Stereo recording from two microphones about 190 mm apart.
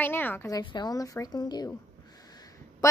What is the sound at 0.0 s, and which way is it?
A woman's voice, 10° left (ahead or behind).